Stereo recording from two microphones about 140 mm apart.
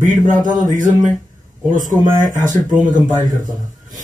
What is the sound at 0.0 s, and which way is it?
Speech, 65° right (ahead or behind).